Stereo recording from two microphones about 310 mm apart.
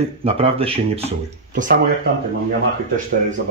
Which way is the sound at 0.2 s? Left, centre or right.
Centre.